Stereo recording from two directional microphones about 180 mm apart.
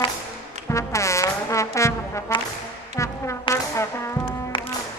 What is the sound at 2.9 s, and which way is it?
Brass instrument, 15° left (ahead or behind).